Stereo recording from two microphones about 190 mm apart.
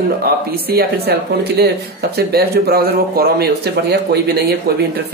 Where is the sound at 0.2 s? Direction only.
55° right (ahead or behind).